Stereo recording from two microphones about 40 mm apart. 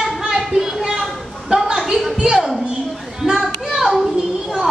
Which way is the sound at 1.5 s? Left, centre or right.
Right.